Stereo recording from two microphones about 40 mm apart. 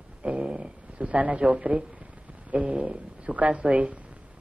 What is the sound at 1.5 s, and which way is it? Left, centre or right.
A woman's voice, right.